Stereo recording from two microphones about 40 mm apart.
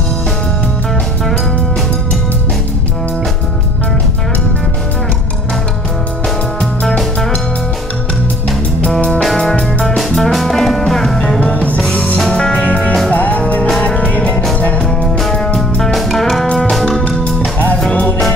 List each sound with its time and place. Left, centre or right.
9.9 s music: centre
11.5 s music: left
12.3 s music: centre
12.5 s music: left
15.0 s music: centre
15.3 s music: centre
15.9 s music: centre
17.2 s music: left